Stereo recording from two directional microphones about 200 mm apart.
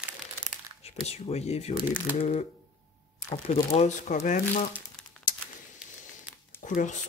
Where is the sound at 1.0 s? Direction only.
30° left (ahead or behind).